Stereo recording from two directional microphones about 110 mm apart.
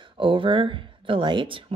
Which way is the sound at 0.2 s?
50° right (ahead or behind).